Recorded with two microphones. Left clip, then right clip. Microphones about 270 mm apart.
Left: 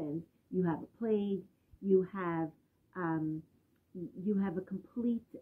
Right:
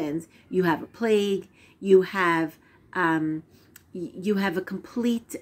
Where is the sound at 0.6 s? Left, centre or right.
Centre.